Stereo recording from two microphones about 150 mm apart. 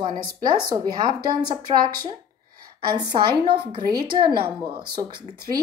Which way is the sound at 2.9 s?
30° right (ahead or behind).